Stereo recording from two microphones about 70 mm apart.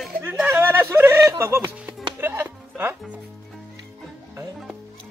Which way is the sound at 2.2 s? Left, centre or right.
Right.